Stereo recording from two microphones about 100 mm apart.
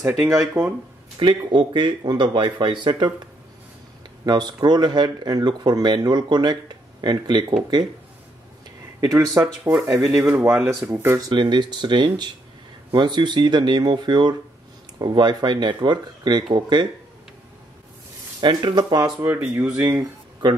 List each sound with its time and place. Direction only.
0.0 s speech: 5° right (ahead or behind)
0.6 s speech: 40° right (ahead or behind)
1.2 s speech: 50° right (ahead or behind)
4.3 s speech: 50° right (ahead or behind)
9.0 s speech: 35° right (ahead or behind)
10.0 s speech: 10° right (ahead or behind)
11.1 s speech: 45° right (ahead or behind)
18.4 s speech: 50° right (ahead or behind)
19.2 s speech: 20° right (ahead or behind)